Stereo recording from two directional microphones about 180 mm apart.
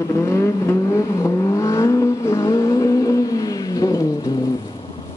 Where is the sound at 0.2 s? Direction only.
15° left (ahead or behind).